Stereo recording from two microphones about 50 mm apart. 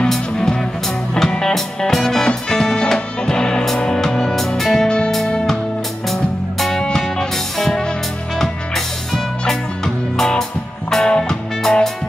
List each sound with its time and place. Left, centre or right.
0.1 s music: centre
4.8 s music: centre